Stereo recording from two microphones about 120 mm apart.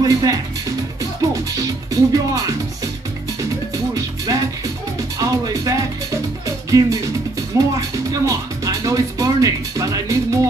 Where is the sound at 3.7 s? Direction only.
30° right (ahead or behind).